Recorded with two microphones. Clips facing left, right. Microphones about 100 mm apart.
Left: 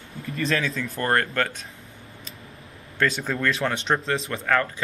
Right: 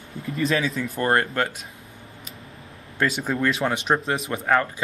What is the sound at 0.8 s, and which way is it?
Speech, 15° right (ahead or behind).